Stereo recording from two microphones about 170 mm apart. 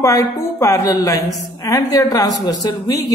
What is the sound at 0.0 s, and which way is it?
A woman's voice, 20° left (ahead or behind).